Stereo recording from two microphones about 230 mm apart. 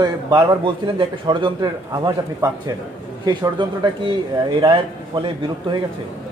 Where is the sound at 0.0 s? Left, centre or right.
Centre.